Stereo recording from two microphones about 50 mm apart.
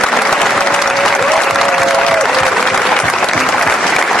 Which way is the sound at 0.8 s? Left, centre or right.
Centre.